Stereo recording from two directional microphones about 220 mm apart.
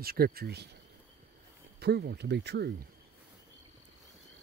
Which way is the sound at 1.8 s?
45° right (ahead or behind).